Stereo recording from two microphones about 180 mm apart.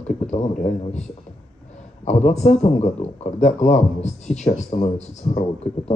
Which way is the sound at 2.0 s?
40° left (ahead or behind).